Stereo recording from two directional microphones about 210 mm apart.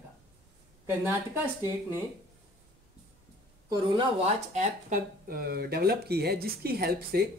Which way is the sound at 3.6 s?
25° right (ahead or behind).